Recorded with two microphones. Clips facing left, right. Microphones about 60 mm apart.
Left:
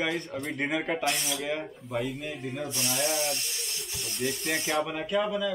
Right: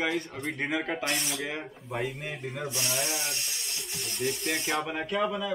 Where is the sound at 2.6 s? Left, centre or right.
Right.